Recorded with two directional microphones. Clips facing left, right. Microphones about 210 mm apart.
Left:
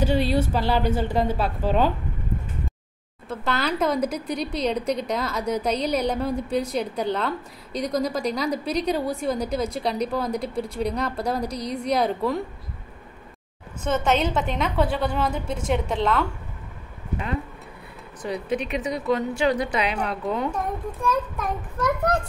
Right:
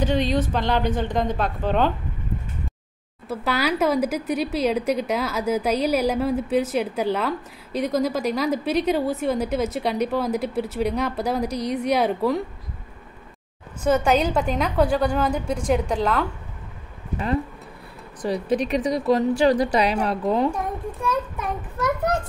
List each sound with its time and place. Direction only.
0.0 s a woman's voice: 10° left (ahead or behind)
3.3 s speech: 10° right (ahead or behind)
11.4 s a woman's voice: 30° left (ahead or behind)
11.7 s speech: 5° right (ahead or behind)
13.8 s speech: 10° right (ahead or behind)
18.2 s a woman's voice: 35° right (ahead or behind)
20.5 s a child's voice: 10° right (ahead or behind)